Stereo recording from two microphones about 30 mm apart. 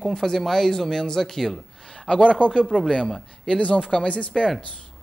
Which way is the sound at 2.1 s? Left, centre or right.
Left.